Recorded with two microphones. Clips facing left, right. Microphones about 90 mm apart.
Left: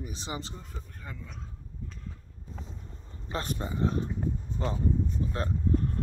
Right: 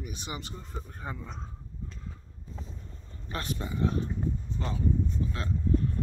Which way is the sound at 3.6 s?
30° left (ahead or behind).